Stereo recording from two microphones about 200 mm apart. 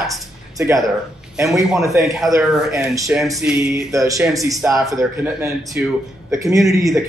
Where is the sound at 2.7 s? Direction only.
15° right (ahead or behind).